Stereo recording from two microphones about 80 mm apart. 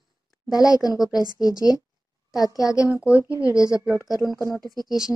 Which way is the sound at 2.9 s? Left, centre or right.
Centre.